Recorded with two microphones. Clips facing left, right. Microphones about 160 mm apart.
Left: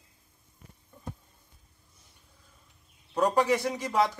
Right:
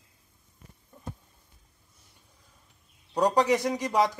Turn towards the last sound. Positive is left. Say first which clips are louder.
# right 2 dB
turn(degrees=-15)  # may be behind; listen again after turning